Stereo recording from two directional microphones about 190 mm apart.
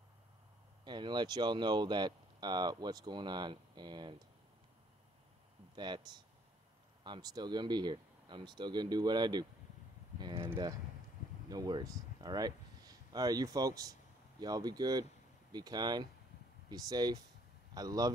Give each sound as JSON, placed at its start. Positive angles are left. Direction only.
{"t": 0.8, "sound": "speech", "side_deg": -25}
{"t": 5.8, "sound": "speech", "side_deg": -25}